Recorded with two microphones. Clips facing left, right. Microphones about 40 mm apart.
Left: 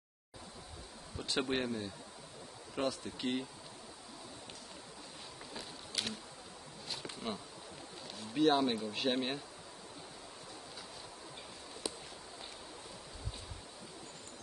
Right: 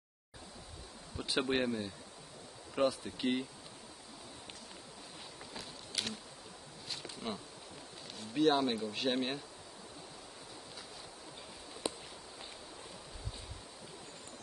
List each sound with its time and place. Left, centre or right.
1.1 s speech: centre
5.5 s a sound: centre
6.9 s insect: centre
8.2 s speech: centre
11.8 s walk: right